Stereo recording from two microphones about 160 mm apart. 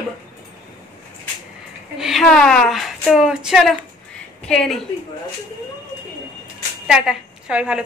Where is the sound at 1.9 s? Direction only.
Centre (ahead or behind).